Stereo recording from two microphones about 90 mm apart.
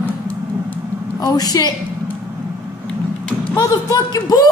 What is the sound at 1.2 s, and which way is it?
Speech, 45° left (ahead or behind).